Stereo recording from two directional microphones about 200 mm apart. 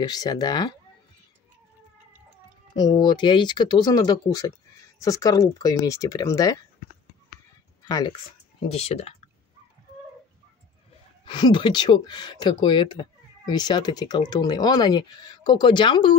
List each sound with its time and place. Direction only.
0.0 s speech: 20° left (ahead or behind)
2.7 s speech: 20° left (ahead or behind)
7.8 s speech: 20° left (ahead or behind)
8.7 s speech: 30° left (ahead or behind)
11.2 s speech: 25° left (ahead or behind)